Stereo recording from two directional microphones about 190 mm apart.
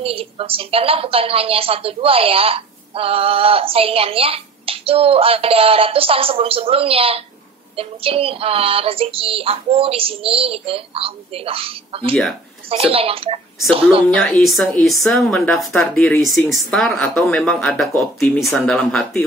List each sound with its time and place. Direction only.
0.0 s a woman's voice: 30° right (ahead or behind)
14.1 s speech: centre (ahead or behind)